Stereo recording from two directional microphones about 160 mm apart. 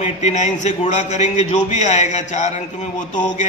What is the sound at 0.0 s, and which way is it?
A man's voice, 45° left (ahead or behind).